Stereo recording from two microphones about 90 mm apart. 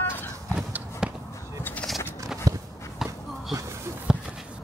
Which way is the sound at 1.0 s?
10° right (ahead or behind).